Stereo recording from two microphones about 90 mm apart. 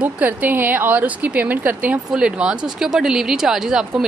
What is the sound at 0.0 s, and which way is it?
A woman's voice, 20° right (ahead or behind).